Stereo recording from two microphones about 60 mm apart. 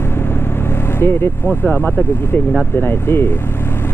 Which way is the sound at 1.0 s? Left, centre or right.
Left.